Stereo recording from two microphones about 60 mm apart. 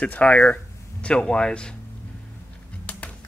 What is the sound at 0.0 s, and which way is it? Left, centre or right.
Speech, left.